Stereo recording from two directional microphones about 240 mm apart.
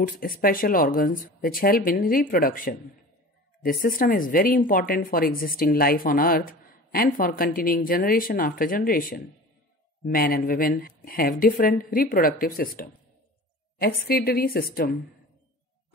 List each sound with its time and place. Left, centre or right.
0.0 s speech: left